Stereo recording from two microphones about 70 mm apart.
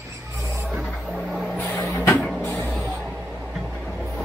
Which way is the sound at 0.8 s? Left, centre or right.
Centre.